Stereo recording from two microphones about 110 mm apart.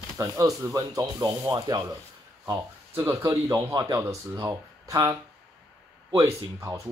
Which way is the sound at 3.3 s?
35° right (ahead or behind).